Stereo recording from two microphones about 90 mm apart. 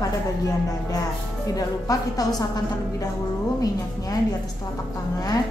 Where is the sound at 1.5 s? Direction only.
45° left (ahead or behind).